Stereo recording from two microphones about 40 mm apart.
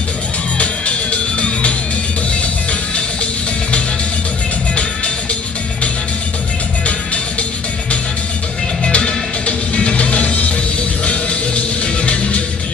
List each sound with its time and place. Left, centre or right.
0.6 s music: left
8.8 s music: left
12.1 s music: left